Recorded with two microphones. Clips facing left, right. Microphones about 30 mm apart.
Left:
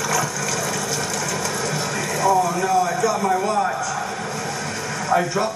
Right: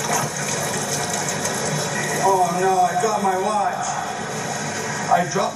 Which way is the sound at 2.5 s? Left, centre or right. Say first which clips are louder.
Right 1 dB; right.